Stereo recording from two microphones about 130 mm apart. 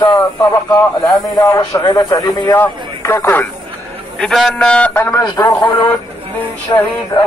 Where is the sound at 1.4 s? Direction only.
20° left (ahead or behind).